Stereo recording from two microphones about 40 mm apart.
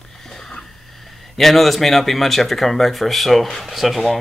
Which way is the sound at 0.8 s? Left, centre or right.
Centre.